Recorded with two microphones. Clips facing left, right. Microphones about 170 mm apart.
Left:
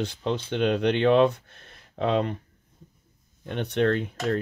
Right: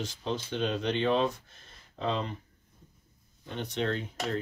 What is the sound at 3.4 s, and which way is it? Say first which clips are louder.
Speech: left 8 dB; 65° left (ahead or behind).